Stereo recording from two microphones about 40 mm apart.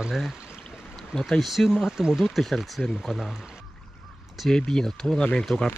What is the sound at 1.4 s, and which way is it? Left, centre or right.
Speech, centre.